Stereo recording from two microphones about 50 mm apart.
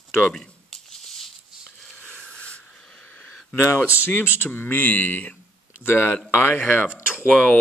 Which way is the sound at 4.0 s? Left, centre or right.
Left.